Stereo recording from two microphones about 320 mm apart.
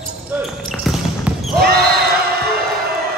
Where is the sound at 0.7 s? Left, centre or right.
Centre.